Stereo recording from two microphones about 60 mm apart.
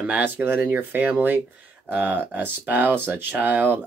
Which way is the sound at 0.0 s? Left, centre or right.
Right.